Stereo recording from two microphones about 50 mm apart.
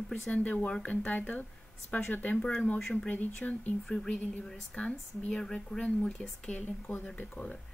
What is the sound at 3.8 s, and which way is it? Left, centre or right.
Speech, centre.